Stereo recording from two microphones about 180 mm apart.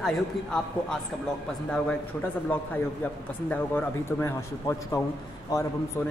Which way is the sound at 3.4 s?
15° left (ahead or behind).